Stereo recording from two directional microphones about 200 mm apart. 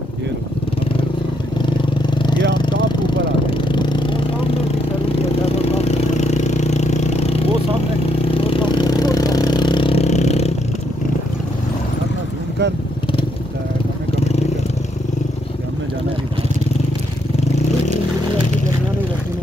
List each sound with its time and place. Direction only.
1.7 s vehicle: 25° left (ahead or behind)
3.4 s vehicle: 25° left (ahead or behind)
5.4 s a sound: 30° left (ahead or behind)